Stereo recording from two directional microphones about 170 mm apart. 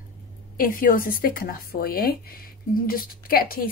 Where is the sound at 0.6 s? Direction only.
55° left (ahead or behind).